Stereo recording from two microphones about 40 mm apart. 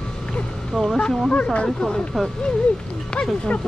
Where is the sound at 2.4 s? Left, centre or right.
Left.